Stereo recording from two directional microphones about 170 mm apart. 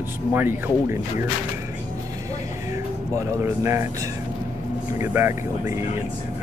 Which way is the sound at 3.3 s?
15° right (ahead or behind).